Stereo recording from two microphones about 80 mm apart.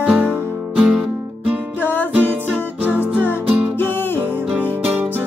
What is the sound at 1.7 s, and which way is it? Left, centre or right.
Music, left.